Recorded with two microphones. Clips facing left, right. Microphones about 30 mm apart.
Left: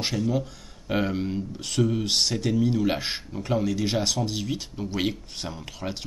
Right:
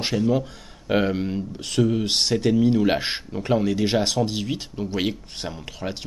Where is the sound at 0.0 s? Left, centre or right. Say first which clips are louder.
Right 4 dB; centre.